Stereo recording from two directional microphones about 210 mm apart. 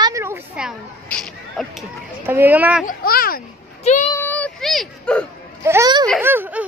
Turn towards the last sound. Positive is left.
turn(degrees=-10)  # may be behind; listen again after turning